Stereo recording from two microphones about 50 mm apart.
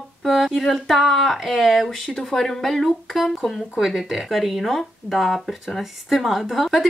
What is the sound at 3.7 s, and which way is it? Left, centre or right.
Speech, centre.